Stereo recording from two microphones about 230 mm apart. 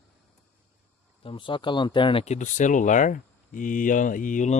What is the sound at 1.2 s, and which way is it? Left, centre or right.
Speech, left.